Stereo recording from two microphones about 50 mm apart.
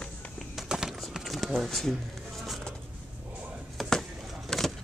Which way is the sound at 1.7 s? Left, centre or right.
Centre.